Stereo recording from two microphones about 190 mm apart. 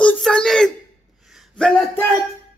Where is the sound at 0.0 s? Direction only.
5° left (ahead or behind).